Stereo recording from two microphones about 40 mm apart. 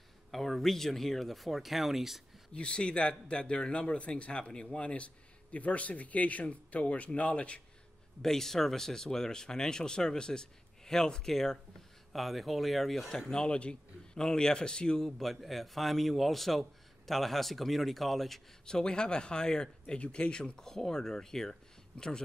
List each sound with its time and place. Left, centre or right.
0.3 s a man's voice: centre
2.5 s speech: left
5.5 s speech: left
8.2 s a man's voice: centre
13.3 s a man's voice: centre
18.7 s speech: centre